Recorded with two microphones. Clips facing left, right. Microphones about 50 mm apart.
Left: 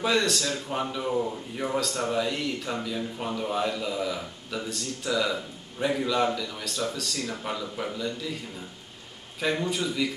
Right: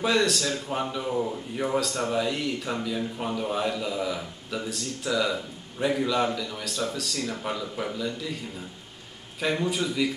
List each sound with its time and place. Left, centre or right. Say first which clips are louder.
0.0 s speech: right 1 dB; centre
9.4 s speech: right 1 dB; centre